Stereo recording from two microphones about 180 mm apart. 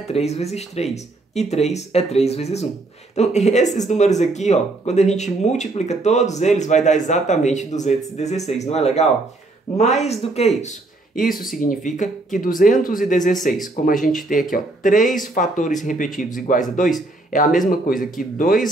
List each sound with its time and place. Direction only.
0.1 s speech: 35° left (ahead or behind)